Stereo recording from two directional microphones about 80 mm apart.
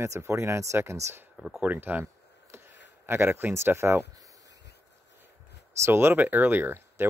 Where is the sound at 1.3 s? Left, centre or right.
Centre.